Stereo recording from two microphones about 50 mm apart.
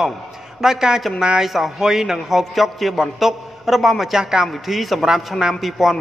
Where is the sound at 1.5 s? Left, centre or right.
Centre.